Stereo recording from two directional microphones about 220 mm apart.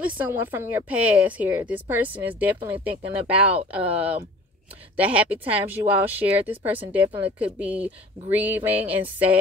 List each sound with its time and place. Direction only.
0.0 s a woman's voice: 10° right (ahead or behind)